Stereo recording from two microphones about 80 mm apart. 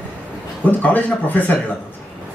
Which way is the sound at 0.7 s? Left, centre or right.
Left.